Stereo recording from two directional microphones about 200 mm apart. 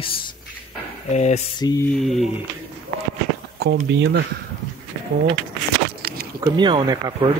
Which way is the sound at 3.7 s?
60° right (ahead or behind).